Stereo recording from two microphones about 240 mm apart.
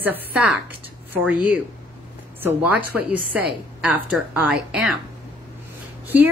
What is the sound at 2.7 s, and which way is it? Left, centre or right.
Speech, right.